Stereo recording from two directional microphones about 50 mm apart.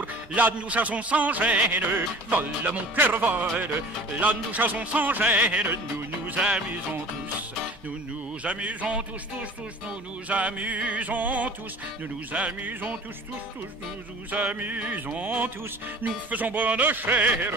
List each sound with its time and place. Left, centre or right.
0.0 s music: right
8.5 s music: right
14.3 s music: right